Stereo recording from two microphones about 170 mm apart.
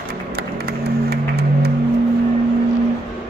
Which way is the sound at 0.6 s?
70° right (ahead or behind).